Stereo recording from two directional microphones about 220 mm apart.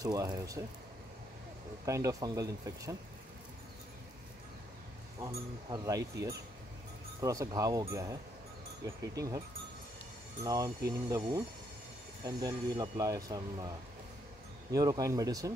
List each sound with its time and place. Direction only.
0.0 s speech: 15° right (ahead or behind)
1.9 s speech: 15° right (ahead or behind)
5.2 s speech: 15° right (ahead or behind)
10.4 s speech: 15° right (ahead or behind)
14.7 s speech: 15° right (ahead or behind)